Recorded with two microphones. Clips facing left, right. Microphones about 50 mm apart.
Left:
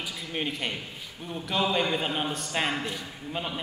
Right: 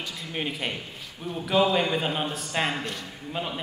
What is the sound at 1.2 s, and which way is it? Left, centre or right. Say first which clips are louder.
A man's voice: right 5 dB; centre.